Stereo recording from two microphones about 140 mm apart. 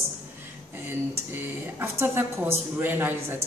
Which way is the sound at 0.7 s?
15° right (ahead or behind).